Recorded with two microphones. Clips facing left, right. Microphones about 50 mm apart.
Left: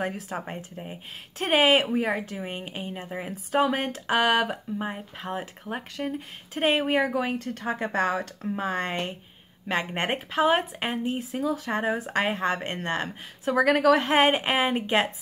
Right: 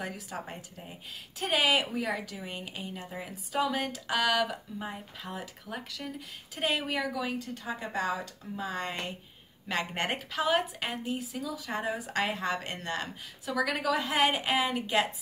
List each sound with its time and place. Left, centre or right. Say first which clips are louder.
0.0 s speech: left 7 dB; left
9.7 s speech: left 4 dB; left